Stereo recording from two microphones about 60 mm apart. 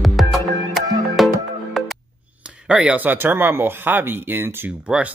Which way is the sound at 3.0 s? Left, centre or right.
Right.